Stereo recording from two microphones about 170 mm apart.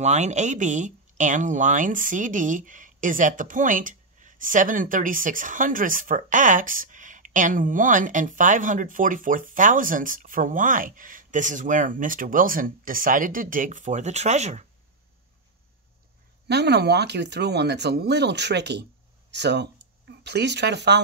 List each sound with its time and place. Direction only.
0.0 s speech: 45° right (ahead or behind)
16.4 s speech: 80° right